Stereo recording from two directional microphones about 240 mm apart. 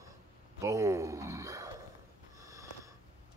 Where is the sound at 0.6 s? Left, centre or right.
Centre.